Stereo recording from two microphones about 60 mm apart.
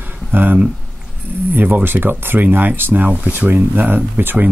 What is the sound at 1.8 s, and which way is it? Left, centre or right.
Speech, right.